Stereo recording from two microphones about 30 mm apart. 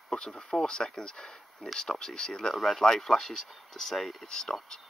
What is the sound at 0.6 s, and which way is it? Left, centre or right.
Speech, left.